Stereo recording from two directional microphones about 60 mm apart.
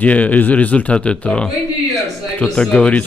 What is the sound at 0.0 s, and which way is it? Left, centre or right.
Speech, left.